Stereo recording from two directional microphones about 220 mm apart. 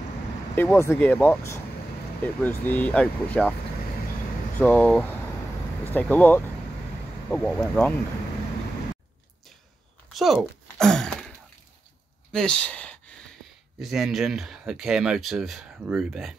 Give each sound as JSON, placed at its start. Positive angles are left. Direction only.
{"t": 0.6, "sound": "speech", "side_deg": 10}
{"t": 4.6, "sound": "speech", "side_deg": 5}
{"t": 10.1, "sound": "a sound", "side_deg": 0}
{"t": 12.3, "sound": "speech", "side_deg": 5}